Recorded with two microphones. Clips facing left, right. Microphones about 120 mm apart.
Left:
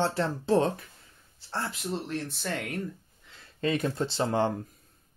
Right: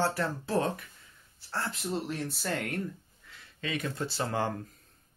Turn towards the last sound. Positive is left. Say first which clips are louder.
# left 5 dB
turn(degrees=20)  # may be behind; listen again after turning